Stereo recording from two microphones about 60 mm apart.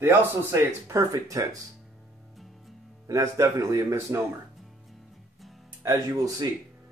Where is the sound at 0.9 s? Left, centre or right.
Right.